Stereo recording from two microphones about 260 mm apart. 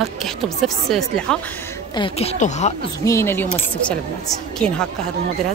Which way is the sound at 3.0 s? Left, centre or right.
Centre.